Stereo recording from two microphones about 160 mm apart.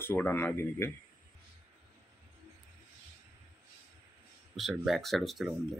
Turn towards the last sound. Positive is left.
turn(degrees=0)  # may be behind; listen again after turning